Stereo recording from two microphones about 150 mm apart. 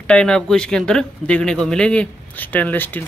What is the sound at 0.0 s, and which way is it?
Speech, 5° left (ahead or behind).